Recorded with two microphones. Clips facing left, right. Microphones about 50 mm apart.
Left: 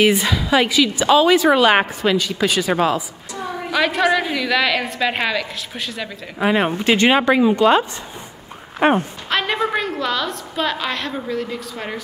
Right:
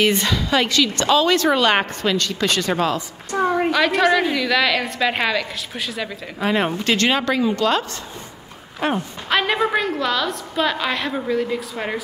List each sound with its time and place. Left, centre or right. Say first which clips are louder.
0.0 s a woman's voice: left 2 dB; centre
3.3 s a sound: right 9 dB; right
3.7 s a woman's voice: left 3 dB; centre
8.7 s speech: left 6 dB; left
9.3 s a woman's voice: right 1 dB; centre